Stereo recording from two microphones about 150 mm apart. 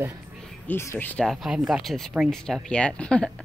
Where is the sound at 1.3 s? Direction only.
Centre (ahead or behind).